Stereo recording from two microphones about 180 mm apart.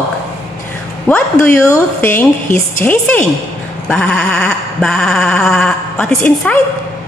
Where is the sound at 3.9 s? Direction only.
5° left (ahead or behind).